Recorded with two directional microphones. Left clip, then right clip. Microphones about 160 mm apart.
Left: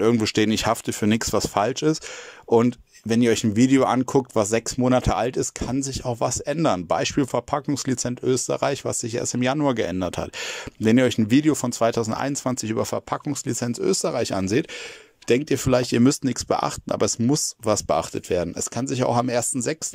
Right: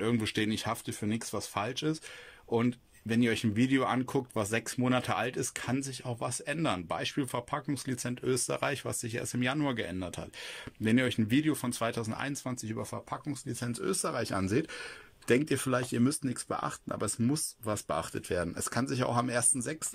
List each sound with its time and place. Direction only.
0.0 s speech: 40° left (ahead or behind)
14.0 s speech: 20° left (ahead or behind)
15.5 s speech: 25° left (ahead or behind)
16.0 s speech: 40° left (ahead or behind); by 19.8 s 25° left (ahead or behind)